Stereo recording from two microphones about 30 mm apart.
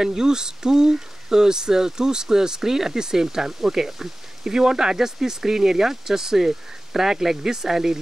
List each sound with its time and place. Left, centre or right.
0.0 s speech: right